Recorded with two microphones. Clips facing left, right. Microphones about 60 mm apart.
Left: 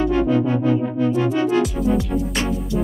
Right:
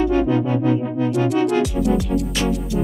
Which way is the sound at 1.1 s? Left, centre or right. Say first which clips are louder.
Right 2 dB; right.